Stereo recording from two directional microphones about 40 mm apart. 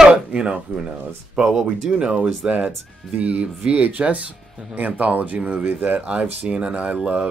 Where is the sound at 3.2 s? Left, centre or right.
Right.